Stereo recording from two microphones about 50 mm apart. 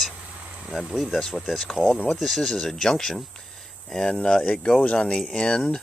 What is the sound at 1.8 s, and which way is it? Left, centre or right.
Speech, left.